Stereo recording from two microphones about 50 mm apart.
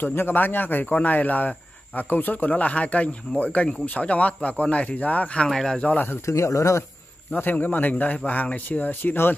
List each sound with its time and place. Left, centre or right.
0.0 s speech: left
6.2 s speech: left
7.3 s speech: left